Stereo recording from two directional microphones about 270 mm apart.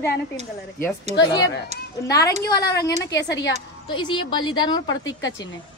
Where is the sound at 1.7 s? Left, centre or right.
Right.